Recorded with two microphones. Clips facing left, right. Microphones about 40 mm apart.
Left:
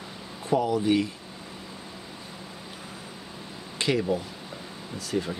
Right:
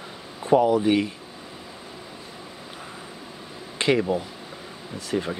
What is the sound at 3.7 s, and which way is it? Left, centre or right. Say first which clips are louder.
Speech: right 4 dB; right.